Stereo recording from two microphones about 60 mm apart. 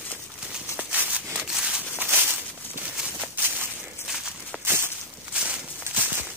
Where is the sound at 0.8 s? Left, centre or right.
Right.